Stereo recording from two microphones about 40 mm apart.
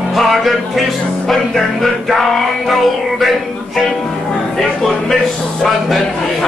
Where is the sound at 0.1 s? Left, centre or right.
Centre.